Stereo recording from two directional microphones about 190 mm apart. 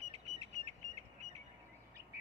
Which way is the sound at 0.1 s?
35° right (ahead or behind).